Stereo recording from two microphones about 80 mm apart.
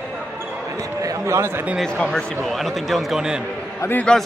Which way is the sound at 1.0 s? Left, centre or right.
Right.